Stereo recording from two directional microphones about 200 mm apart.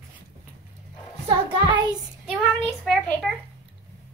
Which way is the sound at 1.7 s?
20° right (ahead or behind).